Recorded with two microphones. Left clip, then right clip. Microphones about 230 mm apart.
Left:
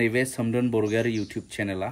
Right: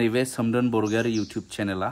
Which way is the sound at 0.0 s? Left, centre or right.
Centre.